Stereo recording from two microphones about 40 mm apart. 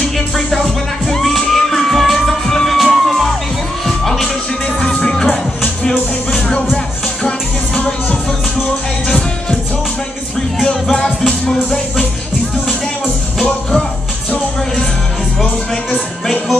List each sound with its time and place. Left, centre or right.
1.0 s music: centre
5.0 s music: centre
10.6 s music: centre
13.4 s music: centre